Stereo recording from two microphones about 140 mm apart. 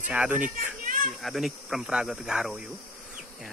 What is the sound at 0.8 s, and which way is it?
Children playing, 80° right.